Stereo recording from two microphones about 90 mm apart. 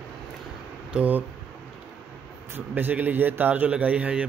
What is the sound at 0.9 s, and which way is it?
Speech, 20° right (ahead or behind).